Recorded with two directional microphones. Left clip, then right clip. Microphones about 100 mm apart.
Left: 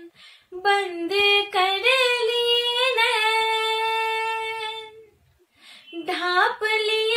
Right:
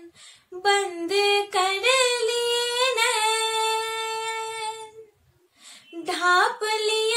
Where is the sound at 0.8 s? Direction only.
10° right (ahead or behind).